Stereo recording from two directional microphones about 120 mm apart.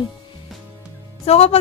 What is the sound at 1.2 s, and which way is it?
Speech, 55° left (ahead or behind).